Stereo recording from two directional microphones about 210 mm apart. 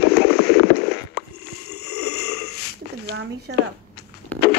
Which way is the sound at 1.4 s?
90° left.